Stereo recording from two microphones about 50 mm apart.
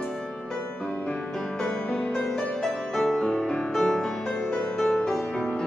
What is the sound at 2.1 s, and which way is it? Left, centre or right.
Music, centre.